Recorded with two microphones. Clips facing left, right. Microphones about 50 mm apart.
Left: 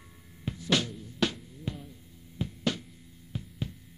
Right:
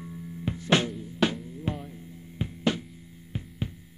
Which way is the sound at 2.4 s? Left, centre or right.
Right.